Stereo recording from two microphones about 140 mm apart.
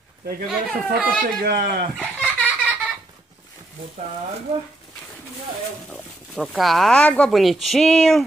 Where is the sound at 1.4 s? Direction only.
90° right.